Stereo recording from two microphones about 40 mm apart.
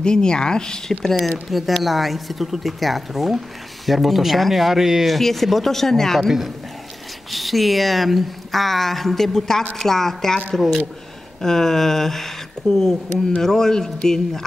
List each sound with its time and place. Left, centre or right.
0.0 s speech: left
1.5 s a man's voice: centre
11.4 s a man's voice: centre